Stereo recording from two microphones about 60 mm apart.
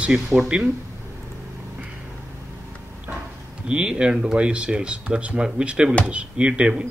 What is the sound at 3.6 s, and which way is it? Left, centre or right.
Speech, centre.